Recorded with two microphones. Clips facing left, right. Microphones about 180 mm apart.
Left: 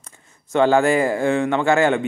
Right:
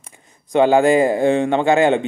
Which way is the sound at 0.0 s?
15° right (ahead or behind).